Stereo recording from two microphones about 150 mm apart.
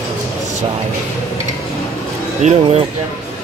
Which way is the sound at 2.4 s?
45° right (ahead or behind).